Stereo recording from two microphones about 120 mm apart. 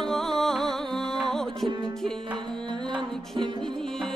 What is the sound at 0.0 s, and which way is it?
Music, 5° left (ahead or behind).